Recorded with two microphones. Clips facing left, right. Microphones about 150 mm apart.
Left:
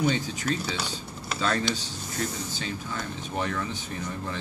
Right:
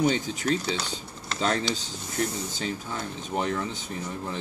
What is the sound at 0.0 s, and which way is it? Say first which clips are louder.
Speech: right 2 dB; 25° right (ahead or behind).